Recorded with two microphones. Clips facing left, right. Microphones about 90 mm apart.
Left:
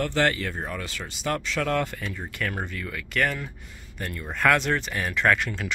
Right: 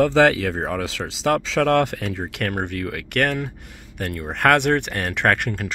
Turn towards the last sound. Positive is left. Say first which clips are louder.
# right 2 dB
turn(degrees=-60)  # may be behind; listen again after turning